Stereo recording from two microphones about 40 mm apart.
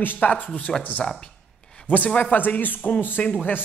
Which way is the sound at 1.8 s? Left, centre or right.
Left.